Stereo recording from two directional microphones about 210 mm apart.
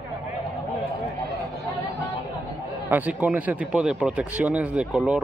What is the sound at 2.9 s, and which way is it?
Speech, 5° right (ahead or behind).